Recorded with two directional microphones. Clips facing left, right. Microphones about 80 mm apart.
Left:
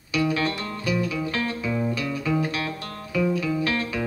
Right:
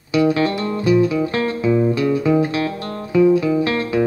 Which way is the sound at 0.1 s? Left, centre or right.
Right.